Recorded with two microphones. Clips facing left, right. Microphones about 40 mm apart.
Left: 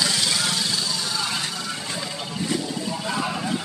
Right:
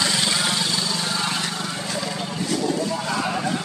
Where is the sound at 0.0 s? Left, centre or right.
Right.